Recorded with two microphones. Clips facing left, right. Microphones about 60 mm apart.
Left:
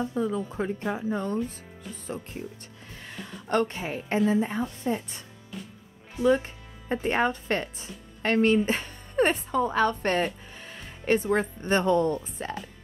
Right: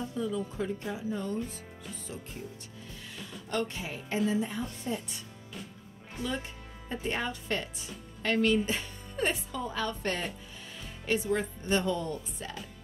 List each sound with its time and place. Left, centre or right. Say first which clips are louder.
0.0 s speech: left 5 dB; left
3.1 s speech: left 8 dB; left
6.2 s speech: left 13 dB; left